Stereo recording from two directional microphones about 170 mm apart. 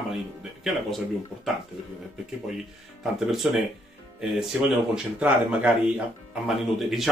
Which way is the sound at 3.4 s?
5° right (ahead or behind).